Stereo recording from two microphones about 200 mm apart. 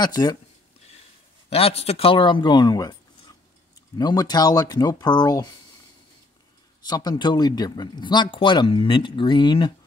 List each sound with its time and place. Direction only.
0.0 s speech: 20° left (ahead or behind)
1.5 s speech: 30° left (ahead or behind)
6.9 s speech: 20° left (ahead or behind)